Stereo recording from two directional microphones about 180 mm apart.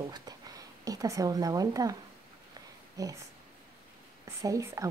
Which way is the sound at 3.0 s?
20° right (ahead or behind).